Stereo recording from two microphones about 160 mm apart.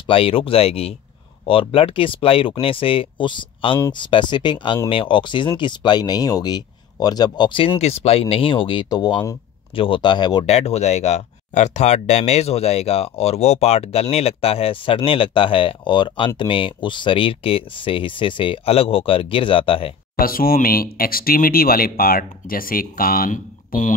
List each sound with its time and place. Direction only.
0.0 s speech: 35° left (ahead or behind)
10.4 s speech: 40° left (ahead or behind)
20.2 s speech: 65° left (ahead or behind)